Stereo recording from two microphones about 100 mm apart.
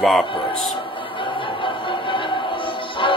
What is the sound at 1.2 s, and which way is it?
Music, 55° left (ahead or behind).